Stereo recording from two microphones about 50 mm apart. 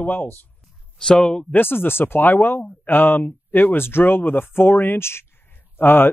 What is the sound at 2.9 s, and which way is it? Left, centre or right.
Speech, left.